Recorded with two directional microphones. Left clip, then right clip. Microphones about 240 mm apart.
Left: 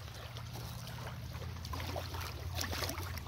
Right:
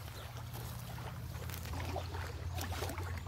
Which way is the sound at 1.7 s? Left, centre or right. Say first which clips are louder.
Left 2 dB; left.